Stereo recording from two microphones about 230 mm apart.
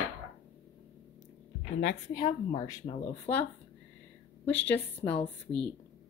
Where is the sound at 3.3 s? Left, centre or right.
Left.